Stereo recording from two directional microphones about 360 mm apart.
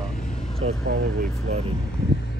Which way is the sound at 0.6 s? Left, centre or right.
Centre.